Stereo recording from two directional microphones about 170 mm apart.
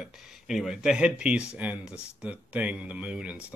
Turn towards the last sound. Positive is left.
turn(degrees=-5)  # may be behind; listen again after turning